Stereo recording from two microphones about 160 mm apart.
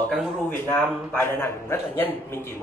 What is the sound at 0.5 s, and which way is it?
A man's voice, 10° left (ahead or behind).